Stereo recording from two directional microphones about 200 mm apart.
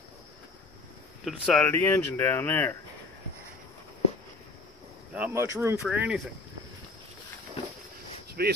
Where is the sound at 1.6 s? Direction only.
10° left (ahead or behind).